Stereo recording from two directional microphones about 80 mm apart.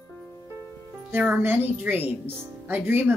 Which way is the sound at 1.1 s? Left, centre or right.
Right.